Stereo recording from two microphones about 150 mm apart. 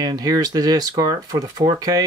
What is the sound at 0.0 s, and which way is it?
Speech, 25° right (ahead or behind).